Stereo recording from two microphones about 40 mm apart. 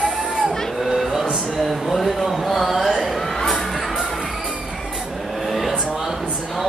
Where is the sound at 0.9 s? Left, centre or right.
Centre.